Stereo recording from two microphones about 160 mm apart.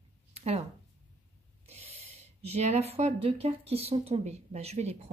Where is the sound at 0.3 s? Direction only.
40° right (ahead or behind).